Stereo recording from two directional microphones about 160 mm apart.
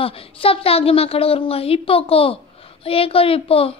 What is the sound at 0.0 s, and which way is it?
A woman's voice, 35° left (ahead or behind).